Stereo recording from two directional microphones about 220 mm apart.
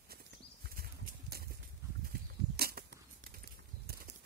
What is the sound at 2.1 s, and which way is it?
Arrow, 45° right (ahead or behind).